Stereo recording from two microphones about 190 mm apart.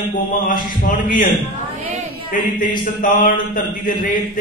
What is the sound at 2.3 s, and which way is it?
A man's voice, 45° left (ahead or behind).